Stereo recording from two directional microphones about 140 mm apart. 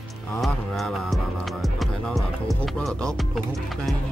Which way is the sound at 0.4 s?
Centre (ahead or behind).